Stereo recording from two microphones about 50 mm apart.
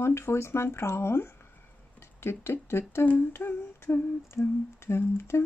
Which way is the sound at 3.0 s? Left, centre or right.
Left.